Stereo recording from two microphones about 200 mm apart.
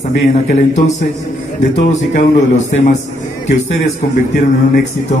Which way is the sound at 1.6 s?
35° left (ahead or behind).